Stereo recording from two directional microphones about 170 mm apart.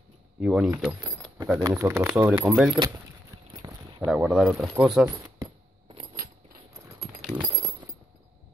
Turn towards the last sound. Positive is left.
turn(degrees=0)  # may be behind; listen again after turning